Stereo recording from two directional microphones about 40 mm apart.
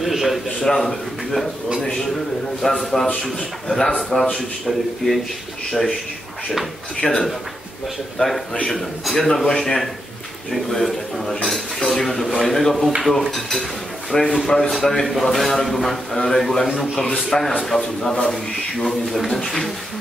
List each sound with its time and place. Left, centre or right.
0.0 s a sound: centre
0.7 s a man's voice: centre
2.6 s a man's voice: centre
4.1 s a man's voice: centre
7.0 s a man's voice: centre
8.2 s a man's voice: left
8.6 s a man's voice: centre